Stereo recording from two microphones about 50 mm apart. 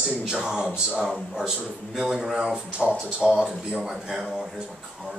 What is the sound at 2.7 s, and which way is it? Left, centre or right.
Speech, right.